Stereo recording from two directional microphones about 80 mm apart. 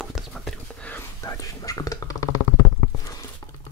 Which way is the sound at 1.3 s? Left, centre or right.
Left.